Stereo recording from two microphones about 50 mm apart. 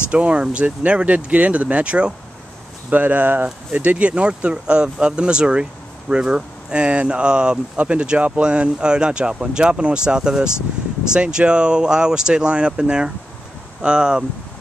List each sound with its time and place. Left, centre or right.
0.1 s speech: right
2.9 s speech: right
3.7 s speech: right